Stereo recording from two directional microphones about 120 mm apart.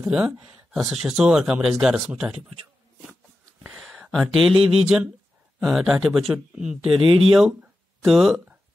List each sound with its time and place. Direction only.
0.1 s speech: 10° right (ahead or behind)
3.6 s speech: centre (ahead or behind)